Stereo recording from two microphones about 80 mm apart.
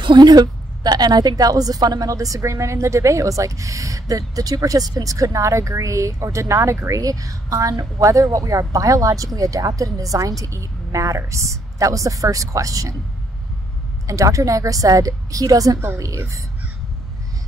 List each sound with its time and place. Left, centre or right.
0.0 s a woman's voice: right
14.0 s a woman's voice: right